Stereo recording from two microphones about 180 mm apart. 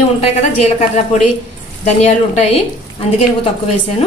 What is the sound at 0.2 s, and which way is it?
A woman's voice, 40° left (ahead or behind).